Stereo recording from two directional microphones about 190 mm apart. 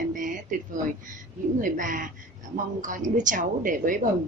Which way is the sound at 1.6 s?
45° right (ahead or behind).